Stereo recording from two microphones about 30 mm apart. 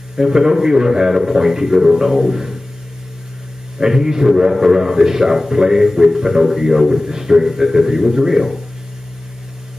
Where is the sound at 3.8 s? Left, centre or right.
Centre.